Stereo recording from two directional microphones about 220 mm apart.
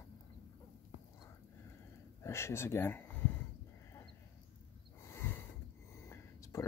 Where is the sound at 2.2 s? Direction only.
10° left (ahead or behind).